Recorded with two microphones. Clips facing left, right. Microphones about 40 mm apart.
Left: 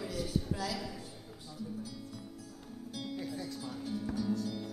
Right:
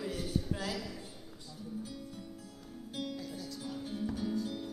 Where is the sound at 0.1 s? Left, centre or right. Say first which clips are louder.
Even; right.